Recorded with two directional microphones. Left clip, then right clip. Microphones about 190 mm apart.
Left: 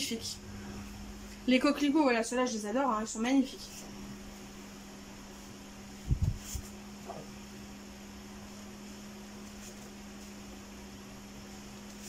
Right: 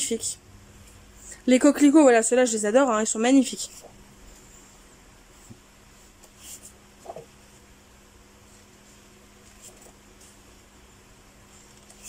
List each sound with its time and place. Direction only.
1.4 s speech: 35° right (ahead or behind); by 3.3 s 55° right (ahead or behind)